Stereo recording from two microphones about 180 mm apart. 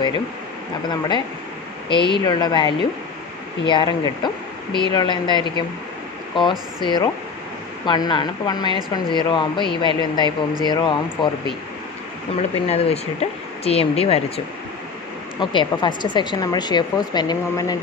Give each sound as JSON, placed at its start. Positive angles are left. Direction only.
{"t": 0.8, "sound": "speech", "side_deg": 25}
{"t": 6.8, "sound": "speech", "side_deg": 25}
{"t": 12.4, "sound": "speech", "side_deg": 35}
{"t": 15.5, "sound": "speech", "side_deg": 25}